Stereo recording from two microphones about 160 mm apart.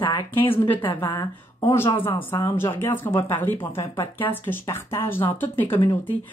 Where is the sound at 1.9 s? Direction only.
15° left (ahead or behind).